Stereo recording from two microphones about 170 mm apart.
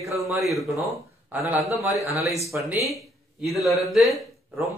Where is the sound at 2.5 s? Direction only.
10° right (ahead or behind).